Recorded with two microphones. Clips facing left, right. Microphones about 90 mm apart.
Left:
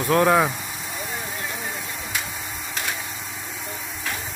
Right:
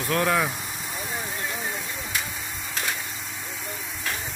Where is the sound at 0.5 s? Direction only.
Centre (ahead or behind).